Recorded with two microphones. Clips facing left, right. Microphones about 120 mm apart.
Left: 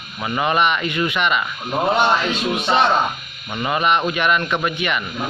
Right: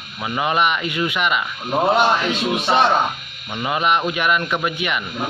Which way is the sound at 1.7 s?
Centre (ahead or behind).